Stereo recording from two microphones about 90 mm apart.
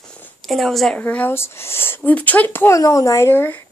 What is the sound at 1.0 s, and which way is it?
Speech, 20° left (ahead or behind).